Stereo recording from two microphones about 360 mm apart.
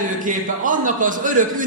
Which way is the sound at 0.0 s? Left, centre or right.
Right.